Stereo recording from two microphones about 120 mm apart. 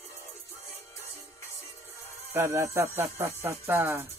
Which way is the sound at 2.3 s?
20° right (ahead or behind).